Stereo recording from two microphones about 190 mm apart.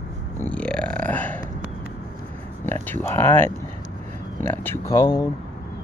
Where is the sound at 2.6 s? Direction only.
10° left (ahead or behind).